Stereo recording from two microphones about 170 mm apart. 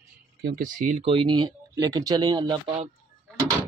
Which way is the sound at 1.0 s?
30° right (ahead or behind).